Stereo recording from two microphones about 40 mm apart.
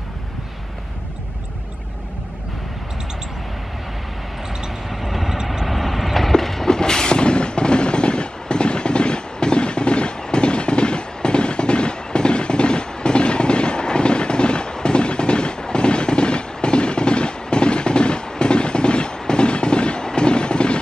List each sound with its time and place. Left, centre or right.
4.8 s vehicle: centre
5.7 s train: centre
6.7 s vehicle: centre